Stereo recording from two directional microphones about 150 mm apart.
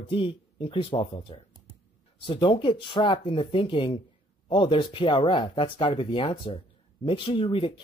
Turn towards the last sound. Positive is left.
turn(degrees=35)  # may be behind; listen again after turning